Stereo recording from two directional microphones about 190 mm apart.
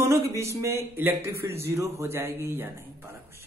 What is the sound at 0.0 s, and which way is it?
A woman's voice, 15° right (ahead or behind).